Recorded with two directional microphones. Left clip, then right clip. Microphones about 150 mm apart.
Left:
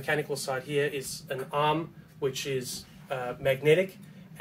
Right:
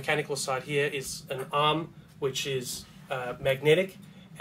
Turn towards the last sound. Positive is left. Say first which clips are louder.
# even
turn(degrees=5)  # may be behind; listen again after turning